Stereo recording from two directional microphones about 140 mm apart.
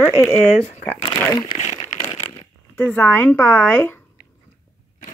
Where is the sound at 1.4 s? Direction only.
60° left (ahead or behind).